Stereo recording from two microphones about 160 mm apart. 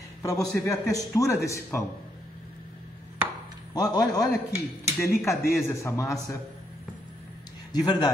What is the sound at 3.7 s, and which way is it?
A man's voice, 25° left (ahead or behind).